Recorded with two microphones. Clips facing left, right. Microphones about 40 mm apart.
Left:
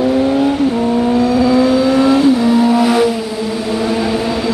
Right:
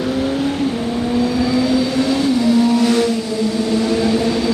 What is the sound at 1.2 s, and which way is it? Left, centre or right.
Vehicle, centre.